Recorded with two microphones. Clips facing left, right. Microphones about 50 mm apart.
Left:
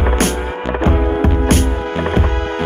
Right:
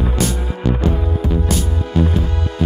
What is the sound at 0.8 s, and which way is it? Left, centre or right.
Hum, left.